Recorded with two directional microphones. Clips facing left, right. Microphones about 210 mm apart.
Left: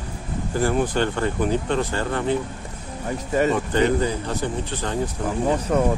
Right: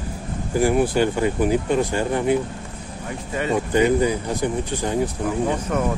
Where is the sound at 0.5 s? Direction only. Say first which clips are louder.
Right 3 dB; 10° right (ahead or behind).